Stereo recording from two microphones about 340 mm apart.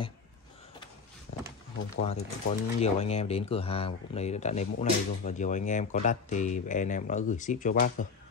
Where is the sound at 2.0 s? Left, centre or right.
Centre.